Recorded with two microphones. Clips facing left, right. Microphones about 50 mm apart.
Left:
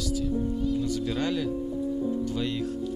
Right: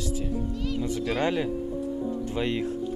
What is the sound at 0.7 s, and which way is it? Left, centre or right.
Speech, right.